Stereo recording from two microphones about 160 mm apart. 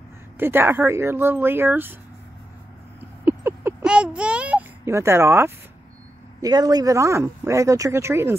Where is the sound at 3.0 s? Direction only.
15° right (ahead or behind).